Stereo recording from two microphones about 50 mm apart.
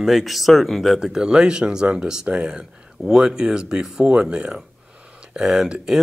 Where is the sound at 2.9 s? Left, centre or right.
Centre.